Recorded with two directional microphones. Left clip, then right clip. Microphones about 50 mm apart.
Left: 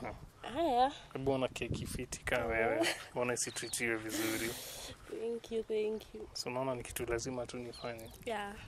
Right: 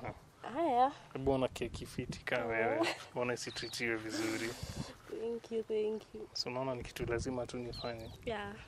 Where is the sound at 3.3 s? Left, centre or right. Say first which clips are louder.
Left 1 dB; left.